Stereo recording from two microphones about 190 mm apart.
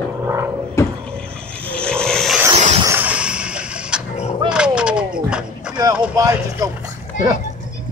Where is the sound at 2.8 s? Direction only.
10° right (ahead or behind).